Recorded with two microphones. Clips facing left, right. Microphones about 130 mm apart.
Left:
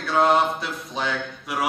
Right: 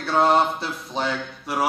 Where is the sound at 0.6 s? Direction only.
30° right (ahead or behind).